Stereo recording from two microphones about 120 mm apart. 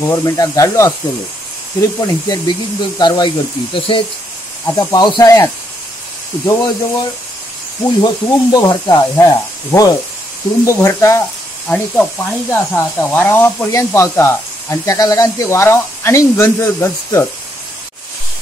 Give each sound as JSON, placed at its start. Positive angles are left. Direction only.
{"t": 0.0, "sound": "speech", "side_deg": 25}
{"t": 4.6, "sound": "speech", "side_deg": 35}
{"t": 11.7, "sound": "speech", "side_deg": 10}